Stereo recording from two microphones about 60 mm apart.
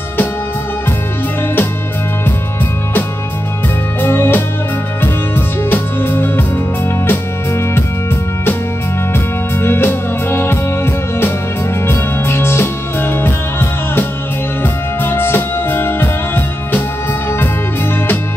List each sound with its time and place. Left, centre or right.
4.0 s music: left
5.7 s music: left
9.6 s music: left